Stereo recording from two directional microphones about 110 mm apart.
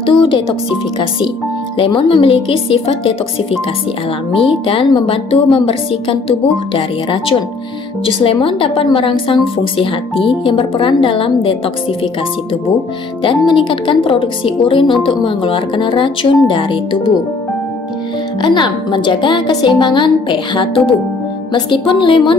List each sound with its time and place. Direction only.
0.0 s speech: 50° left (ahead or behind)
1.8 s speech: 55° left (ahead or behind)
4.3 s a woman's voice: 55° left (ahead or behind)
13.2 s a woman's voice: 50° left (ahead or behind)
18.4 s a woman's voice: 45° left (ahead or behind)